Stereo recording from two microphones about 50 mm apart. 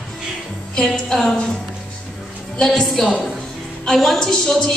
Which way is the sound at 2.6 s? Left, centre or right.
Centre.